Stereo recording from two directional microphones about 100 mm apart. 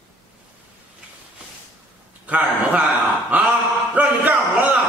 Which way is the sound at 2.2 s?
15° right (ahead or behind).